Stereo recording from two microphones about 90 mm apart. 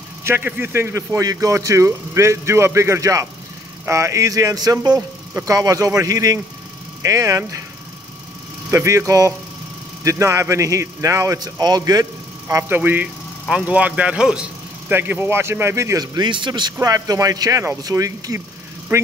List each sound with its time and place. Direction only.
0.2 s speech: 25° right (ahead or behind)
8.6 s speech: 35° right (ahead or behind)
12.4 s speech: 25° right (ahead or behind); by 14.5 s 10° right (ahead or behind)
14.9 s speech: 20° right (ahead or behind)
16.2 s speech: 65° right (ahead or behind)
16.8 s speech: 40° right (ahead or behind)
18.9 s speech: 30° right (ahead or behind)